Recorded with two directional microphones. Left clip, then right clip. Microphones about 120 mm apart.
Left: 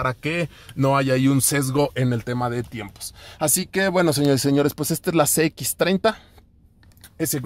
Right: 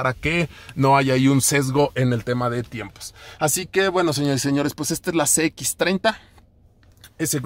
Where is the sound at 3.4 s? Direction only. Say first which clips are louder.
Right 1 dB; 40° left (ahead or behind).